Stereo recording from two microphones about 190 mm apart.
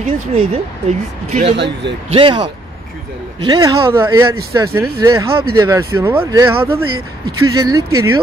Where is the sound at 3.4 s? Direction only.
20° right (ahead or behind).